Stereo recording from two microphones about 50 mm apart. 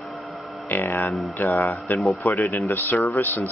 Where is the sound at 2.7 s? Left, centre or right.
Left.